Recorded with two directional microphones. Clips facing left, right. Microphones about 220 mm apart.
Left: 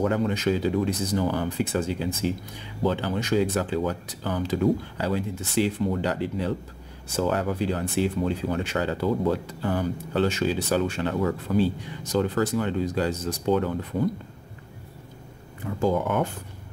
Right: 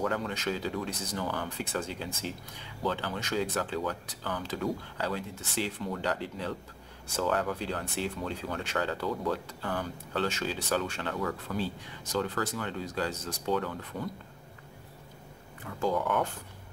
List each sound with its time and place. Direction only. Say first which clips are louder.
0.0 s speech: left 8 dB; 20° left (ahead or behind)
1.6 s speech: left 9 dB; 10° left (ahead or behind)
2.8 s speech: left 7 dB; 20° left (ahead or behind)
9.0 s speech: left 7 dB; 25° left (ahead or behind)
15.6 s speech: left 6 dB; 25° left (ahead or behind)